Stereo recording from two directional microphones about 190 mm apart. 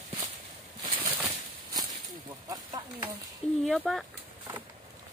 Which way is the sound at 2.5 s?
20° right (ahead or behind).